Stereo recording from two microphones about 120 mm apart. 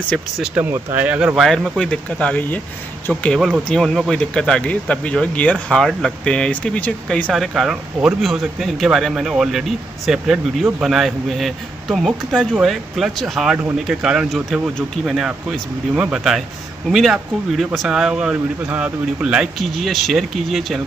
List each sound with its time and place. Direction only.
0.1 s speech: 5° left (ahead or behind)
0.6 s speech: 15° right (ahead or behind)
1.4 s speech: centre (ahead or behind)
3.3 s speech: 5° right (ahead or behind)
7.3 s speech: centre (ahead or behind)